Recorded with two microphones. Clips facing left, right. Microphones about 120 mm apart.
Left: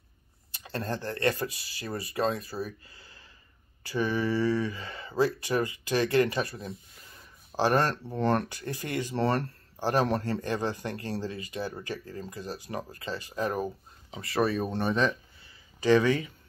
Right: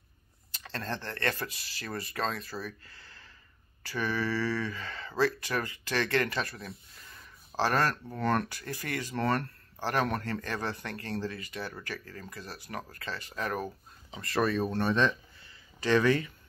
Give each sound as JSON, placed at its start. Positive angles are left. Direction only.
{"t": 0.7, "sound": "speech", "side_deg": 15}
{"t": 8.5, "sound": "speech", "side_deg": 20}
{"t": 9.2, "sound": "speech", "side_deg": 35}
{"t": 9.8, "sound": "a man's voice", "side_deg": 20}
{"t": 14.7, "sound": "speech", "side_deg": 25}